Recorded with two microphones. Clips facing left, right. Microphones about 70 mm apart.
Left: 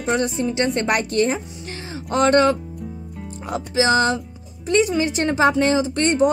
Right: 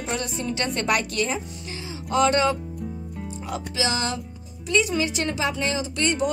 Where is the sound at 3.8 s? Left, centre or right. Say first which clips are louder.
Left 10 dB; left.